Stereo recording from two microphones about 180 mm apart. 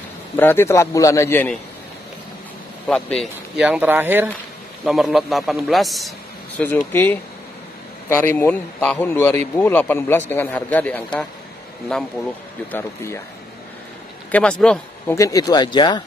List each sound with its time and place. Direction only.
0.4 s a man's voice: 10° left (ahead or behind)
2.9 s a man's voice: centre (ahead or behind)
6.6 s a man's voice: 10° left (ahead or behind)
12.7 s a man's voice: 15° left (ahead or behind)
14.3 s speech: 5° left (ahead or behind)
15.1 s speech: 20° left (ahead or behind)